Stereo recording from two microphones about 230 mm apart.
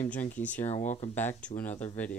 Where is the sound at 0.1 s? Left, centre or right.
Centre.